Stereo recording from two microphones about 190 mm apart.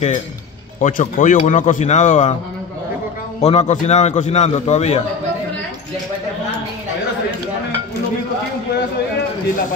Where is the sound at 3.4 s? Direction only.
35° left (ahead or behind).